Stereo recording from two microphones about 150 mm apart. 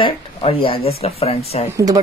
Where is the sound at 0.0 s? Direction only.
35° left (ahead or behind).